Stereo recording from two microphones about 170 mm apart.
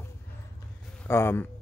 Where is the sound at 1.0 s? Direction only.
15° left (ahead or behind).